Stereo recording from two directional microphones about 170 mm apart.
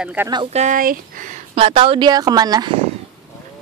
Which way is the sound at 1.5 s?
30° right (ahead or behind).